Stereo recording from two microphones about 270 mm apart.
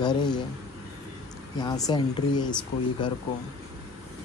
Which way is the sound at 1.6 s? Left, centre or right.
Centre.